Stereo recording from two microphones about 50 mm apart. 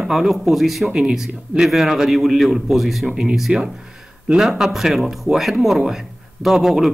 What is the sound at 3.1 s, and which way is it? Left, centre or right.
A man's voice, centre.